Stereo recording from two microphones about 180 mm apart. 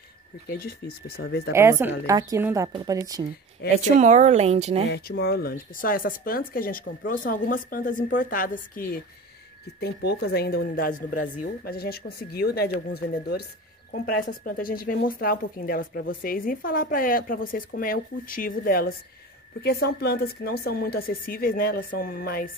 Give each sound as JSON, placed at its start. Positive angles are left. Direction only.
{"t": 0.5, "sound": "speech", "side_deg": 60}
{"t": 1.5, "sound": "a woman's voice", "side_deg": -15}
{"t": 3.7, "sound": "speech", "side_deg": -40}
{"t": 4.8, "sound": "speech", "side_deg": 65}
{"t": 9.8, "sound": "speech", "side_deg": 65}
{"t": 13.9, "sound": "speech", "side_deg": 50}